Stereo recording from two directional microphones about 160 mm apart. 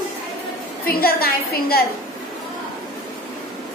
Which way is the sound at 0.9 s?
70° left (ahead or behind).